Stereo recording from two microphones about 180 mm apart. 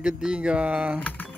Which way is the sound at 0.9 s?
10° left (ahead or behind).